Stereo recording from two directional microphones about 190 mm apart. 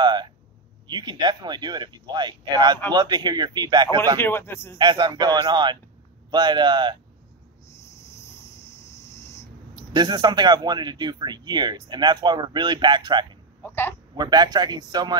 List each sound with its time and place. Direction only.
0.0 s a sound: 25° right (ahead or behind)
0.8 s speech: 25° right (ahead or behind)
4.2 s speech: 10° left (ahead or behind)
4.7 s speech: 20° right (ahead or behind)
9.8 s speech: 20° right (ahead or behind)
13.6 s speech: 10° left (ahead or behind)
14.1 s speech: 20° right (ahead or behind)